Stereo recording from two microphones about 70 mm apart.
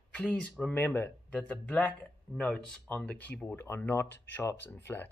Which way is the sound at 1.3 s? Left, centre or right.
Centre.